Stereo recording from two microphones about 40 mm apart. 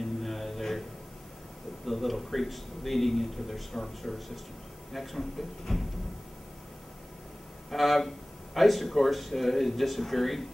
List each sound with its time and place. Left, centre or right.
0.0 s music: centre
1.9 s speech: centre
7.7 s speech: centre